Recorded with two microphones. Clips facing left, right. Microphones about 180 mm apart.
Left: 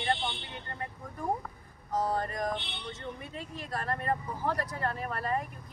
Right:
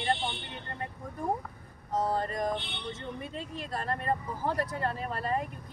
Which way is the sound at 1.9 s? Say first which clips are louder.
Right 1 dB; 25° right (ahead or behind).